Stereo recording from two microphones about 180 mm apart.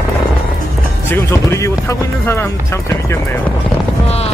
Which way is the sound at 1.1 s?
15° left (ahead or behind).